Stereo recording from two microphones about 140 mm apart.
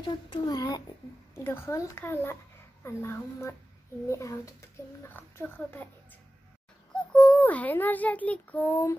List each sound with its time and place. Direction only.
0.0 s speech: 30° left (ahead or behind)
1.3 s a child's voice: 15° left (ahead or behind)
6.9 s a child's voice: 5° left (ahead or behind)